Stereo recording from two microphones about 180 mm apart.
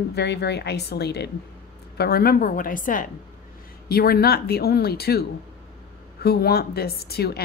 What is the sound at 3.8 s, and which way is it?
A woman's voice, 60° left (ahead or behind).